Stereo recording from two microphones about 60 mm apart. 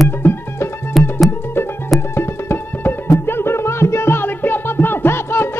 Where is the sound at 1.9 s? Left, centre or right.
Left.